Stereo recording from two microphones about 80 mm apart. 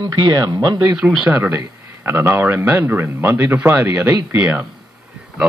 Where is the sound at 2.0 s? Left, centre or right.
Right.